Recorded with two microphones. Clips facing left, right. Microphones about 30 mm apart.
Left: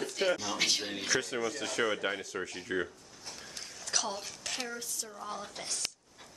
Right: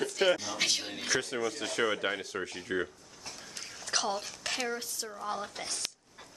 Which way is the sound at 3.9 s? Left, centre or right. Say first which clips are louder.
Right 3 dB; centre.